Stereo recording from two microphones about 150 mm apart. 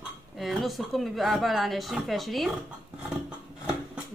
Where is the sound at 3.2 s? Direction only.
5° right (ahead or behind).